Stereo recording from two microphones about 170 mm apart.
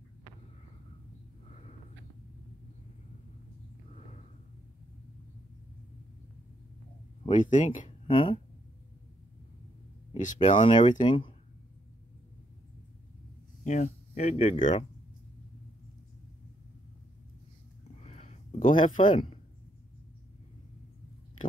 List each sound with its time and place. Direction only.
1.5 s a sound: 40° left (ahead or behind)
7.2 s speech: 45° left (ahead or behind)
8.1 s speech: 30° left (ahead or behind)
10.1 s speech: 45° left (ahead or behind)
10.7 s speech: 25° left (ahead or behind)
13.7 s speech: 45° left (ahead or behind)
17.9 s a sound: 40° left (ahead or behind)
18.8 s speech: 30° left (ahead or behind)